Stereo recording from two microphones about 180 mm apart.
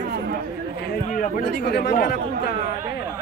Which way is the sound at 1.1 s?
50° left (ahead or behind).